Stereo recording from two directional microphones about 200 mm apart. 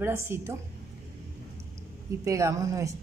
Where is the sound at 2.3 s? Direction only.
15° right (ahead or behind).